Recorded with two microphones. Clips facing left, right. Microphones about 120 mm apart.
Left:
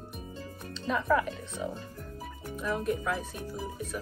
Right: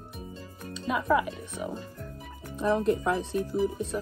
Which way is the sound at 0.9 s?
15° right (ahead or behind).